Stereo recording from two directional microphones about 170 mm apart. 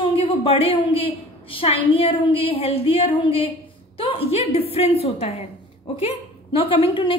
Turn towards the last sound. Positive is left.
turn(degrees=30)  # may be behind; listen again after turning